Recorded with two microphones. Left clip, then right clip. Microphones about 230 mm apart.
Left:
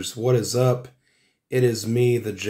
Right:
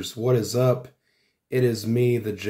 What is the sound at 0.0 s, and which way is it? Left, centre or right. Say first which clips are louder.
Speech: left 1 dB; centre.